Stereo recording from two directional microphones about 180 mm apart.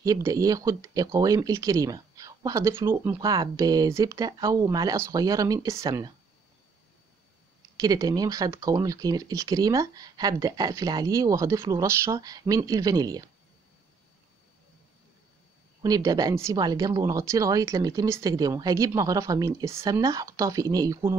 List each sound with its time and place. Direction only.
0.0 s speech: 20° right (ahead or behind)
7.7 s speech: 20° right (ahead or behind)
15.8 s speech: 20° right (ahead or behind)